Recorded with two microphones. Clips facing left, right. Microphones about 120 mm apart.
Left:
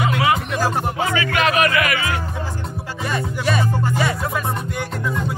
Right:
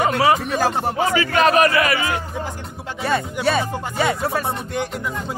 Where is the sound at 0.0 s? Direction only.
35° right (ahead or behind).